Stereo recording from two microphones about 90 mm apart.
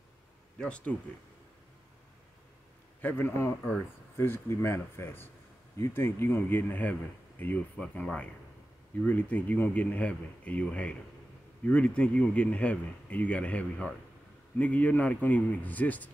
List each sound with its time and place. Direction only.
0.6 s speech: 15° left (ahead or behind)
3.0 s a man's voice: 25° left (ahead or behind)